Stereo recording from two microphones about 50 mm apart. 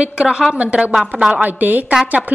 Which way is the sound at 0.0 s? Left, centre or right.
Right.